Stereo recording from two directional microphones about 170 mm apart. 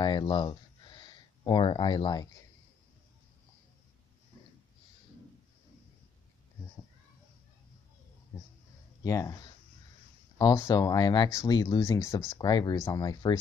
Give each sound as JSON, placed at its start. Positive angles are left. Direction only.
{"t": 0.0, "sound": "speech", "side_deg": 25}
{"t": 8.3, "sound": "a sound", "side_deg": 20}
{"t": 9.0, "sound": "speech", "side_deg": 20}